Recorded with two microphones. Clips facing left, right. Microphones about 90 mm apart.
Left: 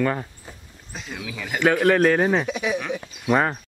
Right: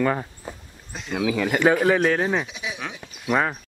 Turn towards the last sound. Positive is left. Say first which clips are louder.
# left 2 dB
turn(degrees=5)  # may be behind; listen again after turning